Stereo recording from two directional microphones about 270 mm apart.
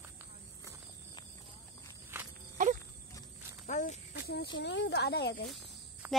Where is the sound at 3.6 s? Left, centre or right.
Left.